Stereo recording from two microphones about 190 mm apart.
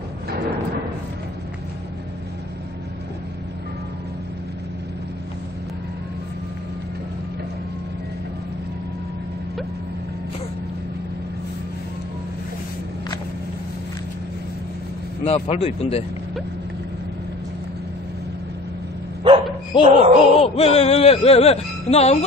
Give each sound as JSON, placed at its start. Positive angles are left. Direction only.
{"t": 15.2, "sound": "speech", "side_deg": 30}
{"t": 19.9, "sound": "a sound", "side_deg": -40}
{"t": 20.3, "sound": "speech", "side_deg": 30}